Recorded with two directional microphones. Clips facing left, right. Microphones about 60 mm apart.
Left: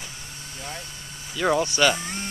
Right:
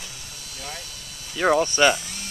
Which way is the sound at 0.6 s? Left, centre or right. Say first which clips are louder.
Even; left.